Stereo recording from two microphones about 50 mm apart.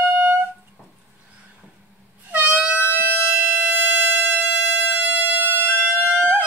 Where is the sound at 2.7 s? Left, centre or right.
Left.